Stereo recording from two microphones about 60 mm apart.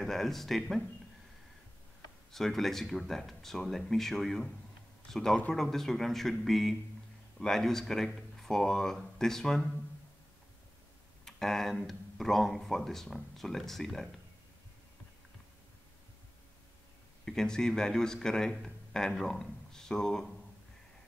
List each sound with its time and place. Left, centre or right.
0.0 s speech: centre
2.3 s speech: centre
11.2 s speech: centre
17.2 s speech: centre